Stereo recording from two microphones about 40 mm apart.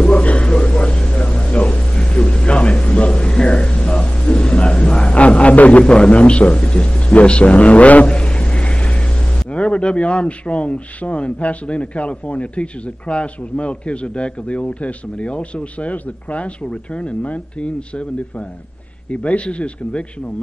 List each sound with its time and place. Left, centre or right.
0.0 s speech: left
19.0 s speech: left